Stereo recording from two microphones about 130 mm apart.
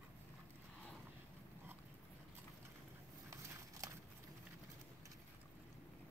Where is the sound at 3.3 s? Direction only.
25° right (ahead or behind).